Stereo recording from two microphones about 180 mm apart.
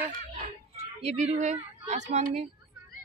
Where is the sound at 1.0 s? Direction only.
40° right (ahead or behind).